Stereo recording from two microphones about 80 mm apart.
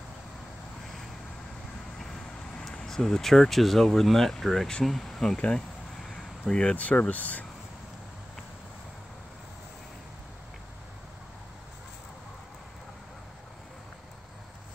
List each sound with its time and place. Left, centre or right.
2.7 s speech: centre
6.0 s a sound: centre
6.6 s speech: centre